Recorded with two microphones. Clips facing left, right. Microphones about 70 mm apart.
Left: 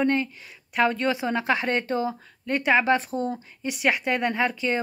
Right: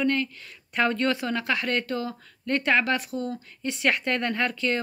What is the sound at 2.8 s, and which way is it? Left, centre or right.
Speech, left.